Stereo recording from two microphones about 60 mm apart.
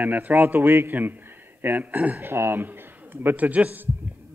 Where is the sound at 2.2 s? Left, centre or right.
Right.